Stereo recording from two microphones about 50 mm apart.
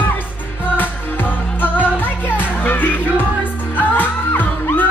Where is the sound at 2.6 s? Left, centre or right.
Left.